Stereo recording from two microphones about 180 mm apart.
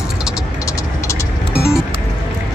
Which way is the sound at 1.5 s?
5° right (ahead or behind).